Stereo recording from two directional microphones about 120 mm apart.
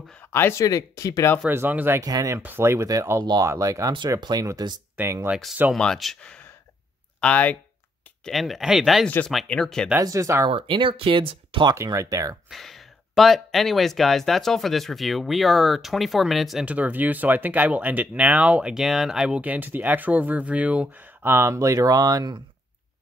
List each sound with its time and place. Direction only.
0.3 s speech: 20° left (ahead or behind)
1.5 s speech: 15° right (ahead or behind)
2.0 s speech: 30° right (ahead or behind)
4.9 s speech: 20° right (ahead or behind)
5.8 s speech: 5° left (ahead or behind)
8.3 s speech: centre (ahead or behind)
10.0 s speech: 25° right (ahead or behind)
10.5 s speech: 45° right (ahead or behind)
11.7 s speech: 25° right (ahead or behind)
12.4 s speech: centre (ahead or behind)
16.6 s speech: 10° right (ahead or behind); by 22.4 s 35° right (ahead or behind)